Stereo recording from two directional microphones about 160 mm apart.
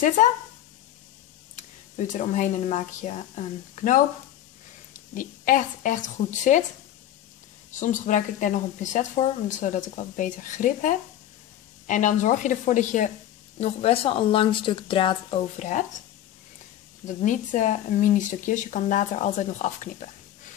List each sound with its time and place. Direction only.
0.2 s speech: 50° left (ahead or behind)
1.6 s speech: 50° left (ahead or behind)
7.8 s speech: 50° left (ahead or behind)
13.6 s speech: 40° left (ahead or behind)
15.6 s speech: 50° left (ahead or behind)
17.0 s speech: 50° left (ahead or behind)